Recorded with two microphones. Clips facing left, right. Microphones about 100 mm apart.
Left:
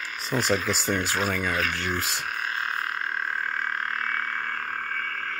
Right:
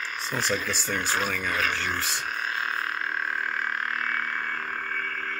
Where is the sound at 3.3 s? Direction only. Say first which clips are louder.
Even; 40° left (ahead or behind).